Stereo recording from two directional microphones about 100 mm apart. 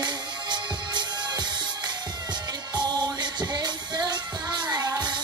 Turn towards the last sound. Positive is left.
turn(degrees=-40)  # may be behind; listen again after turning